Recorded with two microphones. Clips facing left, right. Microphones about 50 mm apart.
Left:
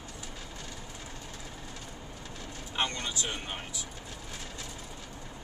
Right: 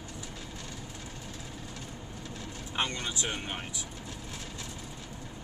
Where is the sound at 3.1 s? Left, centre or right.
Centre.